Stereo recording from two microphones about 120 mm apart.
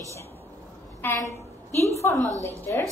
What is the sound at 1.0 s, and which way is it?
A woman's voice, 20° left (ahead or behind).